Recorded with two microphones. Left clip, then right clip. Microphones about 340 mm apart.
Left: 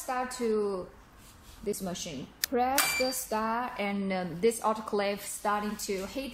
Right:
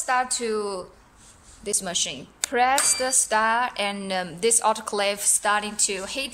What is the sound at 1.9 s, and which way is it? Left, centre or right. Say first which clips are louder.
Speech: right 10 dB; right.